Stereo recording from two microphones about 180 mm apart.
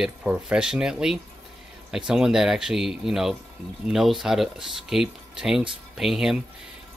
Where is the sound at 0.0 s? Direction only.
5° right (ahead or behind).